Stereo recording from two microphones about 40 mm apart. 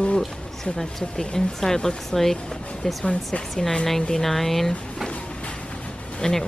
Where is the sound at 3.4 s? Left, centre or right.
Centre.